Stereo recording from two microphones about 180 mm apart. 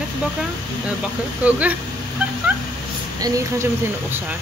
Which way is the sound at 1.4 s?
10° right (ahead or behind).